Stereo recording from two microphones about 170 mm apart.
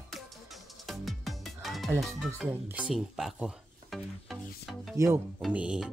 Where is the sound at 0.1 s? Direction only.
Centre (ahead or behind).